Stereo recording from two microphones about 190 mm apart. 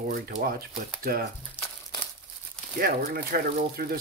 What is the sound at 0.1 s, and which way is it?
Speech, 50° right (ahead or behind).